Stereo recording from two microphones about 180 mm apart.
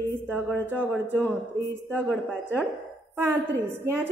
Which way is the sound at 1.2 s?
10° left (ahead or behind).